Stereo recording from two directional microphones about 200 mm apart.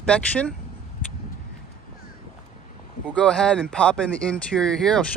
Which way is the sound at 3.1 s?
5° left (ahead or behind).